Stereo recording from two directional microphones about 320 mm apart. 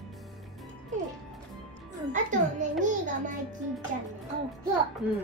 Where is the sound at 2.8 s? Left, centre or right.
Right.